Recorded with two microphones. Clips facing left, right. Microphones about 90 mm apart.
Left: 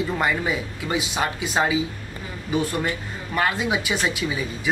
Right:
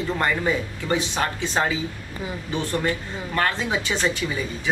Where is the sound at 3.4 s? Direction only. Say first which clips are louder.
Left 1 dB; 10° left (ahead or behind).